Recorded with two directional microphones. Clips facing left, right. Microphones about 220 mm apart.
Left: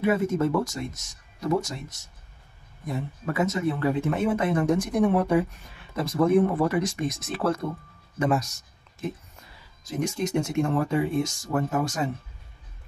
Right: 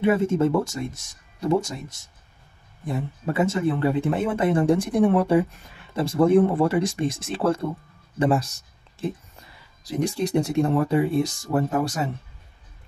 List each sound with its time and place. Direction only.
0.0 s speech: 25° right (ahead or behind)
2.8 s speech: 30° right (ahead or behind)